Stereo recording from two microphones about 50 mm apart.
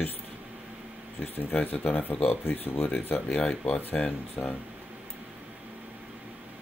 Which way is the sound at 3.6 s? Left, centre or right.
Left.